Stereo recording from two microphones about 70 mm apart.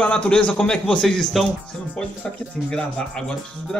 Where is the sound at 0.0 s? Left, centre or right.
Centre.